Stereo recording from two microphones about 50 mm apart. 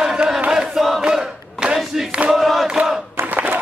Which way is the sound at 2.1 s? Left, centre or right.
Centre.